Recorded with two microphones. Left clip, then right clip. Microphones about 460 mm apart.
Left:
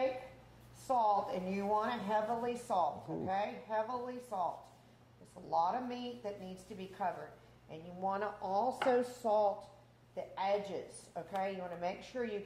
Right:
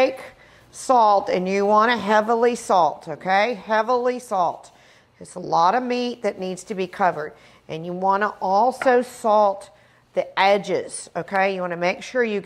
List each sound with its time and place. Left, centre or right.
0.8 s a woman's voice: right
7.7 s a woman's voice: right
10.1 s a woman's voice: right